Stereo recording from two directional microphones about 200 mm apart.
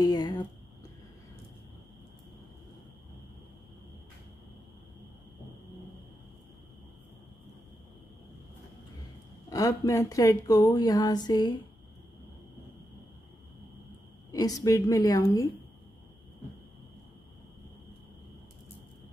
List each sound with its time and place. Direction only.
0.0 s a sound: 20° left (ahead or behind)
9.5 s speech: 15° left (ahead or behind)
14.3 s a woman's voice: 15° left (ahead or behind)